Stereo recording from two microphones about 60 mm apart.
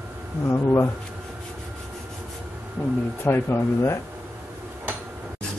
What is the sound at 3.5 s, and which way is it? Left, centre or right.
Speech, left.